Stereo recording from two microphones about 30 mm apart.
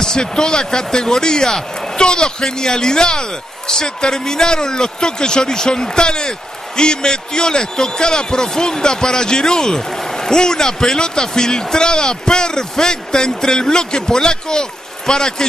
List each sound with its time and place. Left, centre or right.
0.0 s speech: left